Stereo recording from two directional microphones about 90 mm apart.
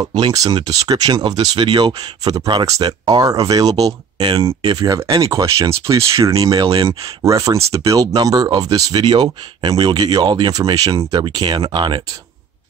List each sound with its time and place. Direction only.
0.3 s speech: 40° right (ahead or behind)
1.4 s speech: 65° right (ahead or behind)
1.9 s speech: 45° right (ahead or behind)
4.2 s speech: 80° right
4.6 s speech: 45° right (ahead or behind)
6.9 s speech: 40° right (ahead or behind)
10.6 s speech: 45° right (ahead or behind); by 12.0 s 60° right (ahead or behind)